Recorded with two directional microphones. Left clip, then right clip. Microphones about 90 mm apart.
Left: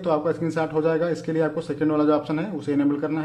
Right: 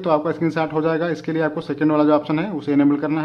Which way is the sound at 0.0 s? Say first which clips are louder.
Right 4 dB; 20° right (ahead or behind).